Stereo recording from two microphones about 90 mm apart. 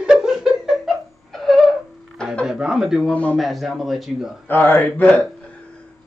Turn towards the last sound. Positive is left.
turn(degrees=20)  # may be behind; listen again after turning